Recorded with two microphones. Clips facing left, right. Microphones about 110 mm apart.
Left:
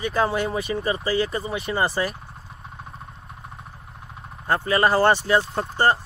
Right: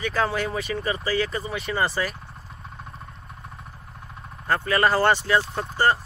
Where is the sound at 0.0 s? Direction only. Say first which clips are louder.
Left 2 dB; 25° left (ahead or behind).